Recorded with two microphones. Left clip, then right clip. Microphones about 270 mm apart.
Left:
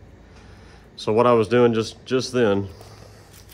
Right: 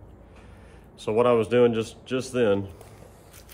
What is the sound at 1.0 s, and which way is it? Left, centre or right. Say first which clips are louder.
A man's voice: left 4 dB; left.